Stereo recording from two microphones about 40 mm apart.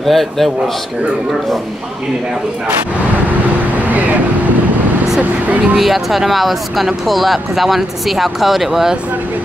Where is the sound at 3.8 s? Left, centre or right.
Right.